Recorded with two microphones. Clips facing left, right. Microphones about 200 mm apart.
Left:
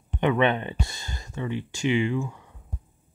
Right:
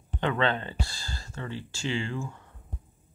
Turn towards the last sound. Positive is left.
turn(degrees=15)  # may be behind; listen again after turning